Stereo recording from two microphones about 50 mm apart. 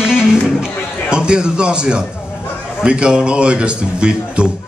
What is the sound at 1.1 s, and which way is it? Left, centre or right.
A man's voice, centre.